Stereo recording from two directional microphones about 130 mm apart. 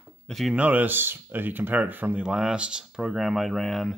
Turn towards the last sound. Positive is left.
turn(degrees=0)  # may be behind; listen again after turning